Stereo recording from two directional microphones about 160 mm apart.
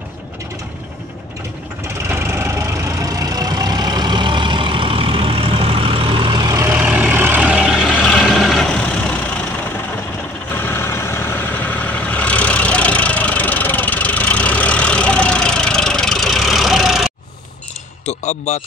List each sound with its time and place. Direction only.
2.0 s vehicle: 15° right (ahead or behind); by 9.2 s 10° left (ahead or behind)
10.5 s vehicle: 15° left (ahead or behind)
18.0 s a sound: 45° left (ahead or behind)